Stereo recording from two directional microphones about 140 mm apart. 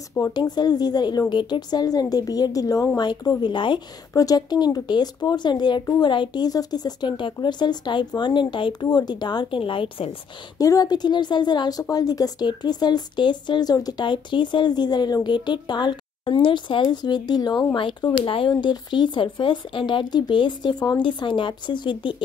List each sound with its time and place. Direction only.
0.3 s a woman's voice: 30° left (ahead or behind)
10.6 s speech: 25° left (ahead or behind)